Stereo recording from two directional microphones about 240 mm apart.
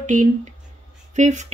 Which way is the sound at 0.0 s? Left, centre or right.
Right.